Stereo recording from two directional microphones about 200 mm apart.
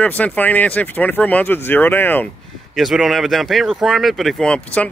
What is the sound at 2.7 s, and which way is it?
Speech, centre (ahead or behind).